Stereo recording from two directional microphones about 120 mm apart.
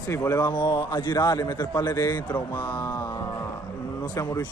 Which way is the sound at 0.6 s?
40° left (ahead or behind).